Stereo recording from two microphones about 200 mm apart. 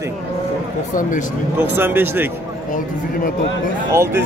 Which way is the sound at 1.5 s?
10° right (ahead or behind).